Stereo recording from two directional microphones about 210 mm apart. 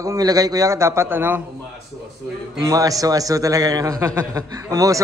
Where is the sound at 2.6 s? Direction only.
15° right (ahead or behind).